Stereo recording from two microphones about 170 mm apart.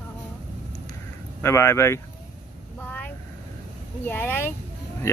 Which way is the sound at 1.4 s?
15° left (ahead or behind).